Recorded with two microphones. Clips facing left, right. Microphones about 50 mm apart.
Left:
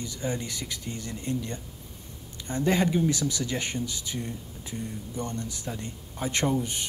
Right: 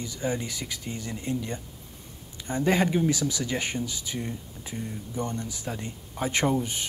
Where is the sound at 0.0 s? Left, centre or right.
Centre.